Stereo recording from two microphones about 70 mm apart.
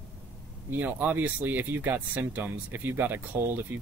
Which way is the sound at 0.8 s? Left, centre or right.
Right.